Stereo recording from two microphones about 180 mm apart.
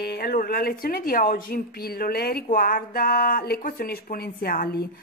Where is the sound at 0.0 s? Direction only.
60° left (ahead or behind).